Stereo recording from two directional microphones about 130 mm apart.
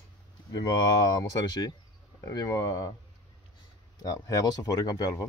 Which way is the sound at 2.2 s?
30° left (ahead or behind).